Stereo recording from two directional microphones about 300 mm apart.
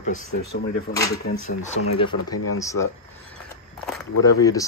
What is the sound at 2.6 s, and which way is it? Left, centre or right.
Speech, centre.